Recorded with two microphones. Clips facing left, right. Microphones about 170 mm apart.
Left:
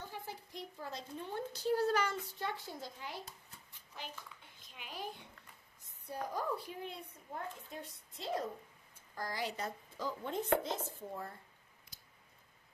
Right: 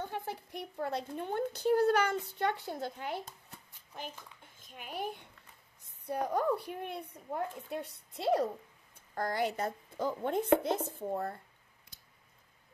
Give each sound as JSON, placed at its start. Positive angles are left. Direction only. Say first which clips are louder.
{"t": 0.0, "sound": "a child's voice", "louder": "right 8 dB", "side_deg": -60}